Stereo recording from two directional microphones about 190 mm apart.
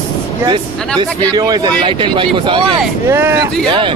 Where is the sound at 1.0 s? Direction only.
20° right (ahead or behind).